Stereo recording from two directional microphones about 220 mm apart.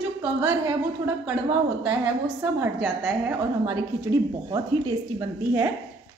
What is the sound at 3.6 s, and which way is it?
A woman's voice, 15° right (ahead or behind).